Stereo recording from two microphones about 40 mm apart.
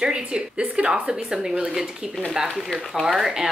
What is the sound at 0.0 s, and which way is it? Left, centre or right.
Speech, right.